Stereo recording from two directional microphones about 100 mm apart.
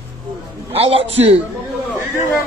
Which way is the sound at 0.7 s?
70° right (ahead or behind).